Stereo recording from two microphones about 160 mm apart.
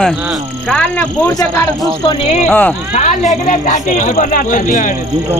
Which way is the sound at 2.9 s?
45° left (ahead or behind).